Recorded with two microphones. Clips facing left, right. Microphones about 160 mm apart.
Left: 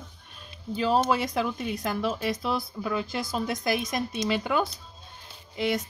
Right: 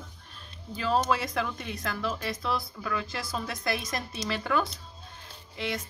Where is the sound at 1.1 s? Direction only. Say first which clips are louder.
Left 3 dB; 20° left (ahead or behind).